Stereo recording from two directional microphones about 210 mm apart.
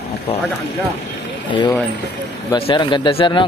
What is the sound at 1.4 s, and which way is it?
Speech, 20° left (ahead or behind).